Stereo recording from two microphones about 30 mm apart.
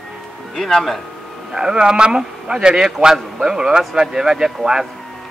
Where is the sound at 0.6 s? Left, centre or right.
Centre.